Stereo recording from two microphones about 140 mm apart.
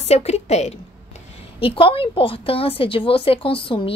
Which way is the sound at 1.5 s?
40° left (ahead or behind).